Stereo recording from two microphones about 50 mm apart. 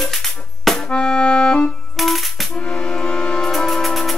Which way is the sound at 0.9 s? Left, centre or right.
Left.